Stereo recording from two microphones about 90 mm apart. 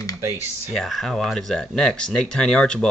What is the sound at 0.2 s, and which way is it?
Speech, 30° right (ahead or behind).